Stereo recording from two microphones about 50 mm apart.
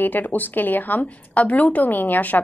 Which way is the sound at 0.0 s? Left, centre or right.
Left.